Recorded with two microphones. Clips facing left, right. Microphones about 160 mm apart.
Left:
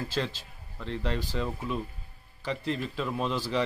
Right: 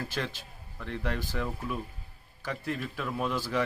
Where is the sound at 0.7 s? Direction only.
20° left (ahead or behind).